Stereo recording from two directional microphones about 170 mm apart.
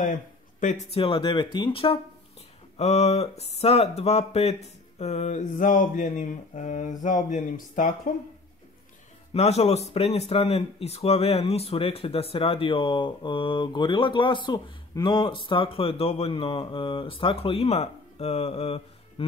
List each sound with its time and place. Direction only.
0.6 s speech: 45° left (ahead or behind)
0.9 s speech: 30° left (ahead or behind); by 8.1 s 50° left (ahead or behind)
9.3 s speech: 40° left (ahead or behind)